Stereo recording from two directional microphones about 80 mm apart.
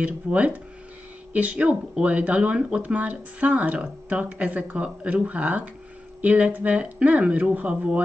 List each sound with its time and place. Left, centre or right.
0.0 s speech: centre